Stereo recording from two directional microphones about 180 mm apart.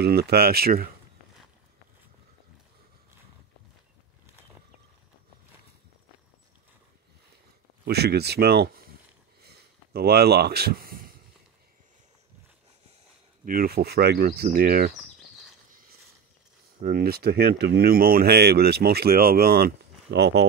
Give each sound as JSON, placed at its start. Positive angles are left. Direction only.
{"t": 0.0, "sound": "speech", "side_deg": -60}
{"t": 7.8, "sound": "speech", "side_deg": -65}
{"t": 9.4, "sound": "a sound", "side_deg": -60}
{"t": 13.5, "sound": "speech", "side_deg": -55}
{"t": 15.7, "sound": "mechanisms", "side_deg": -50}
{"t": 16.8, "sound": "speech", "side_deg": -55}